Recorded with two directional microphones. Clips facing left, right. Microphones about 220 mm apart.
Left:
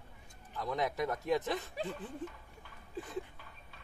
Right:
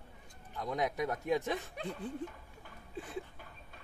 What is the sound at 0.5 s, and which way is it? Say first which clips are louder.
Speech: even; 15° right (ahead or behind).